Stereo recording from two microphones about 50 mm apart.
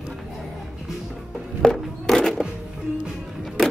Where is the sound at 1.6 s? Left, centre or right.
Centre.